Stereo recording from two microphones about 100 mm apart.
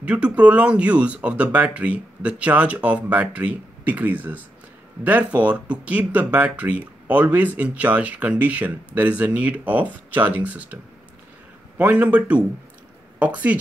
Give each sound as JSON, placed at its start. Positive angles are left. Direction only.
{"t": 0.0, "sound": "speech", "side_deg": -10}
{"t": 11.8, "sound": "speech", "side_deg": -15}